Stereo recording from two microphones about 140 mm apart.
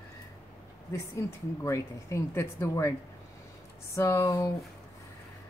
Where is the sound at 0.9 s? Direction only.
20° left (ahead or behind).